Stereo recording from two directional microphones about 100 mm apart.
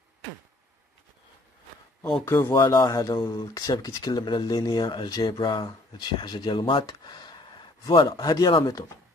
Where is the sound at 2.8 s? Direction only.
45° left (ahead or behind).